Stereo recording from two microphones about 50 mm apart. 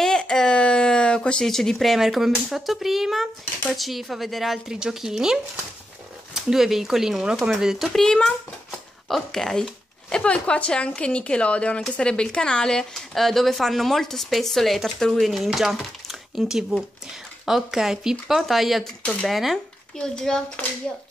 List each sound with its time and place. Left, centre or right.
0.2 s a sound: centre
1.4 s speech: centre
7.9 s speech: centre
20.0 s speech: centre